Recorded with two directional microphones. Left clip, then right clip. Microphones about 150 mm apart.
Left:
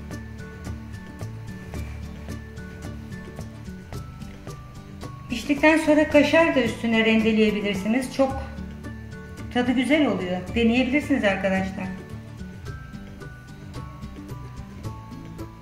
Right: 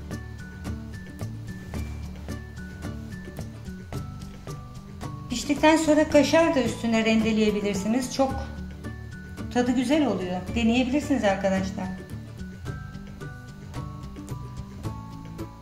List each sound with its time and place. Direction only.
5.0 s speech: 5° right (ahead or behind)
9.5 s speech: centre (ahead or behind)